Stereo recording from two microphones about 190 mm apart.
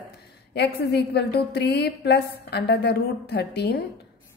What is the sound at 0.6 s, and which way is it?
A woman's voice, 60° left (ahead or behind).